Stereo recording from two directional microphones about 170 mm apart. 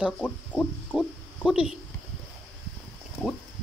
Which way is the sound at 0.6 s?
Centre (ahead or behind).